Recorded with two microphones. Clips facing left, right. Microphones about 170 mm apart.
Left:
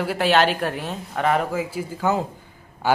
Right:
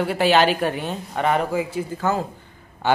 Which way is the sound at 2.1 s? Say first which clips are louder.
Left 3 dB; 15° left (ahead or behind).